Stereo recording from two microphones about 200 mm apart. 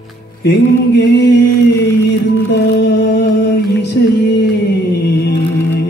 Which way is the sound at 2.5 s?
60° left (ahead or behind).